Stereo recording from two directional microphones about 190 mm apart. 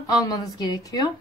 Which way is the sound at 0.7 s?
20° left (ahead or behind).